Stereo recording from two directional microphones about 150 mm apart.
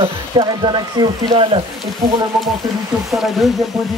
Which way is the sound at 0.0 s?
35° right (ahead or behind).